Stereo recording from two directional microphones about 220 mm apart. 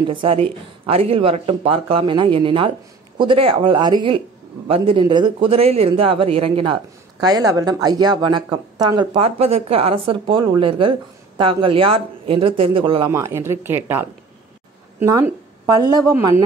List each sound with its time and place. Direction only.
0.0 s a man's voice: 20° right (ahead or behind)
13.1 s a woman's voice: 10° right (ahead or behind)